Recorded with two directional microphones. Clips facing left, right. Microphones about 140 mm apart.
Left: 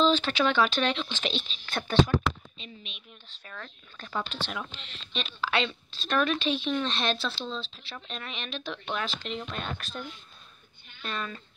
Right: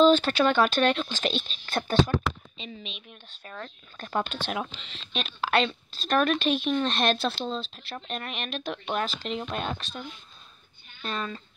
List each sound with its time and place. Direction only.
0.0 s speech: 50° right (ahead or behind)
2.5 s speech: 90° right
3.4 s speech: 35° right (ahead or behind)
4.1 s speech: 50° right (ahead or behind)
5.2 s speech: 45° right (ahead or behind)
9.8 s speech: 20° right (ahead or behind)
11.0 s speech: 35° right (ahead or behind)